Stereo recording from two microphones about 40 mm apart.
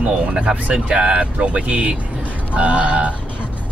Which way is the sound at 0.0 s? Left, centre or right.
Right.